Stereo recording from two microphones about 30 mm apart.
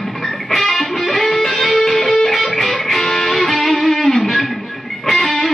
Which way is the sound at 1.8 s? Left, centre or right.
Centre.